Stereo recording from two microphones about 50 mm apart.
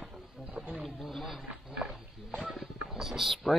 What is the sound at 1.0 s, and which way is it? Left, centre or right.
Speech, centre.